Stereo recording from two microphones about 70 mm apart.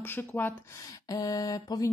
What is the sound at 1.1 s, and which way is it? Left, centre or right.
Mantra, left.